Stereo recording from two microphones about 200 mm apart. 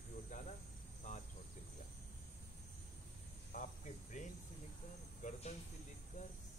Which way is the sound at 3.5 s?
40° left (ahead or behind).